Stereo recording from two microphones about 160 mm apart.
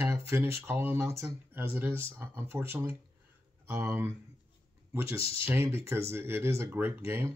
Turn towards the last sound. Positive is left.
turn(degrees=-15)  # may be behind; listen again after turning